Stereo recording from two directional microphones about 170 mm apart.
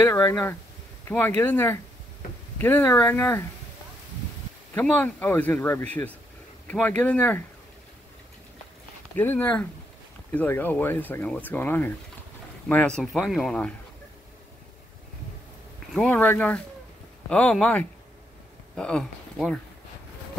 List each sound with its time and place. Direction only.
0.0 s speech: 15° left (ahead or behind)
4.7 s speech: 10° left (ahead or behind)
9.1 s speech: 15° left (ahead or behind)
15.9 s speech: centre (ahead or behind)